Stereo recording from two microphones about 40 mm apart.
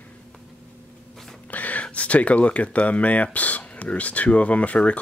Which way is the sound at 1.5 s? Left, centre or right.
Left.